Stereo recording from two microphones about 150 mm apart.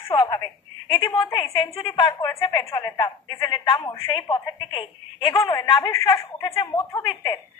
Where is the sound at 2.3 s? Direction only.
20° left (ahead or behind).